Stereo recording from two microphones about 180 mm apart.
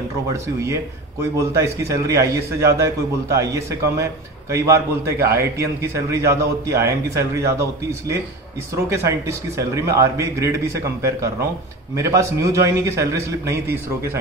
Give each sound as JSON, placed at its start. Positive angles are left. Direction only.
{"t": 0.3, "sound": "a man's voice", "side_deg": -15}
{"t": 8.8, "sound": "a man's voice", "side_deg": -15}